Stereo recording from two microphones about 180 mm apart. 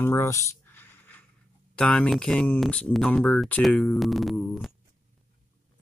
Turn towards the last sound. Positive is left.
turn(degrees=0)  # may be behind; listen again after turning